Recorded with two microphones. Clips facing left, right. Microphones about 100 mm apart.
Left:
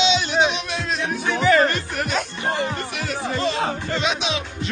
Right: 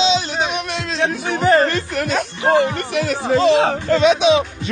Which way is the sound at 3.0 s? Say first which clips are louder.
Right 9 dB; 90° right.